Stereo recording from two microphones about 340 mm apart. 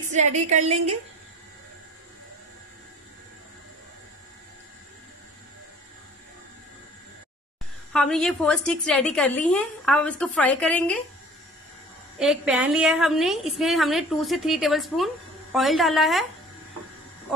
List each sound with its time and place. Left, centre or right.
0.1 s a woman's voice: centre
7.9 s a woman's voice: centre
12.2 s a woman's voice: centre